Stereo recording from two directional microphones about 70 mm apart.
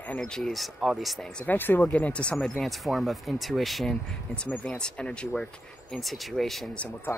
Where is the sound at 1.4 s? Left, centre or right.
Left; by 3.9 s centre.